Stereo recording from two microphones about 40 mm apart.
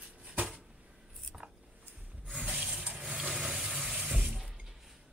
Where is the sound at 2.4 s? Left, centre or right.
Centre.